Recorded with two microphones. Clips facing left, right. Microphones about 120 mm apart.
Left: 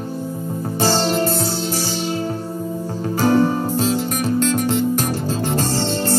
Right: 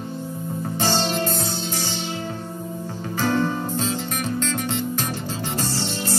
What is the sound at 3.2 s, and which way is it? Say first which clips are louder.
Music: left 6 dB; 40° left (ahead or behind).